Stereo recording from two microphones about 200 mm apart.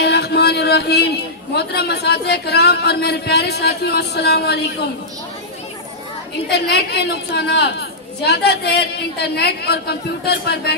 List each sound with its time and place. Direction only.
0.0 s a woman's voice: 55° left (ahead or behind)
6.5 s a woman's voice: 55° left (ahead or behind)